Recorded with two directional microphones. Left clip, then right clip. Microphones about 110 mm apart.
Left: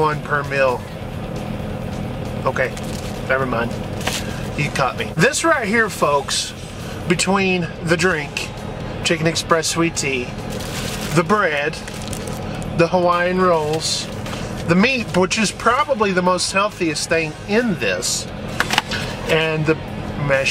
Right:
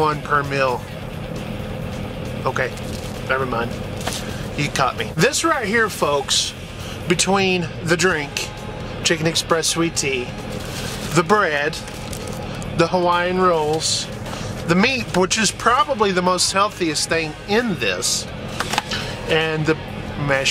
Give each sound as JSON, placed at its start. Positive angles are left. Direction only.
{"t": 0.0, "sound": "speech", "side_deg": -25}
{"t": 2.4, "sound": "speech", "side_deg": -20}
{"t": 11.1, "sound": "speech", "side_deg": -25}
{"t": 12.7, "sound": "speech", "side_deg": -20}
{"t": 18.9, "sound": "a sound", "side_deg": -20}